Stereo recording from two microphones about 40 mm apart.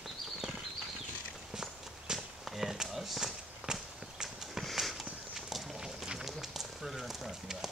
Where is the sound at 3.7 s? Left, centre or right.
Centre.